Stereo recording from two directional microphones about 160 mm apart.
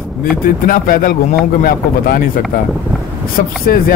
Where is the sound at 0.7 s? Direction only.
60° left (ahead or behind).